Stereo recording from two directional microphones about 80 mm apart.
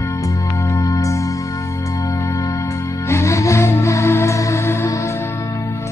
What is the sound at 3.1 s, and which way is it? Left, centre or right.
Music, left.